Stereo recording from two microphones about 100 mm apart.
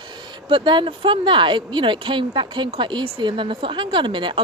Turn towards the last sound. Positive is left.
turn(degrees=-55)  # may be behind; listen again after turning